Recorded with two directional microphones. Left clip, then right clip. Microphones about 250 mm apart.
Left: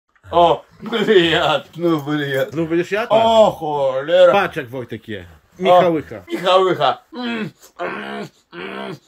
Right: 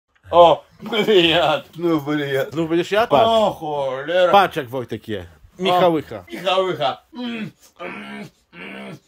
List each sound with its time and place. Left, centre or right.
0.3 s speech: right
1.8 s speech: centre
6.2 s a man's voice: centre